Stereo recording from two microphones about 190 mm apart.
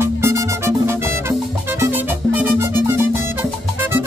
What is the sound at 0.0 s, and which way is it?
Music, 15° right (ahead or behind).